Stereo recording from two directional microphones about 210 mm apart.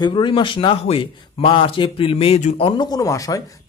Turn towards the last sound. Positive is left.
turn(degrees=15)  # may be behind; listen again after turning